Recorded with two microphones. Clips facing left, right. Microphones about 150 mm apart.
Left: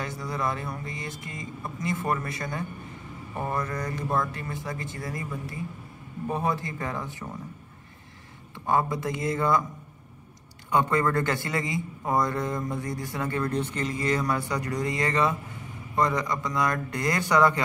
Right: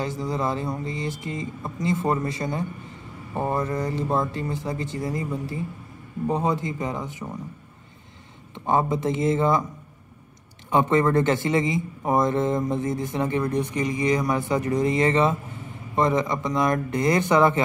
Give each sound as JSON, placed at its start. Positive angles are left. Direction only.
{"t": 0.0, "sound": "a man's voice", "side_deg": -25}
{"t": 8.5, "sound": "a man's voice", "side_deg": -20}
{"t": 10.7, "sound": "a man's voice", "side_deg": -20}